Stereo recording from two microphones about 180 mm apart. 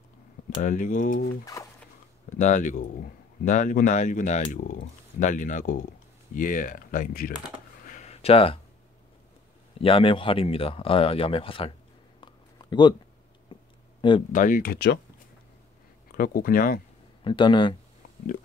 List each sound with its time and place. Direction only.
0.6 s speech: 45° left (ahead or behind)
1.4 s speech: 20° left (ahead or behind)
2.2 s speech: 45° left (ahead or behind)
7.8 s a sound: 40° left (ahead or behind)
9.8 s speech: 30° left (ahead or behind)
12.2 s a sound: 25° left (ahead or behind)
14.3 s speech: 50° left (ahead or behind)
16.2 s speech: 55° left (ahead or behind)
17.2 s speech: 25° left (ahead or behind)